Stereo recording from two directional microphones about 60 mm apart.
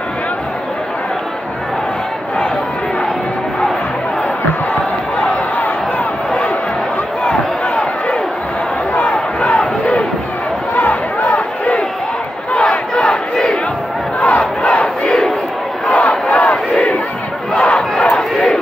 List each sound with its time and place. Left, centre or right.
7.2 s a sound: centre
8.9 s battle cry: left
10.7 s crowd: left
12.9 s crowd: centre
16.7 s battle cry: centre